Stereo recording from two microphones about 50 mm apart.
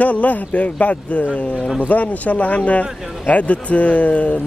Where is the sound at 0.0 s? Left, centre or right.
Left.